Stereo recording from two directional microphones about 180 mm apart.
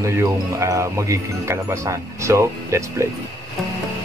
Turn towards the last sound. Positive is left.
turn(degrees=-15)  # may be behind; listen again after turning